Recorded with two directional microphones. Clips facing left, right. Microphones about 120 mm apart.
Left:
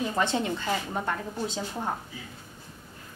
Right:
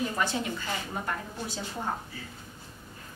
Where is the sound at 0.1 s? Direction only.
25° left (ahead or behind).